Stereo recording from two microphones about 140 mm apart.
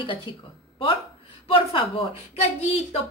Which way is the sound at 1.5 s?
40° left (ahead or behind).